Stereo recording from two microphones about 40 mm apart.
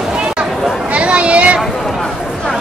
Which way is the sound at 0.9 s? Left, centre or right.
Right.